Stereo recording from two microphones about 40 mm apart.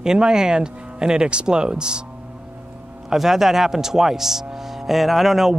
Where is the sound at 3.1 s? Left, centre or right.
Centre.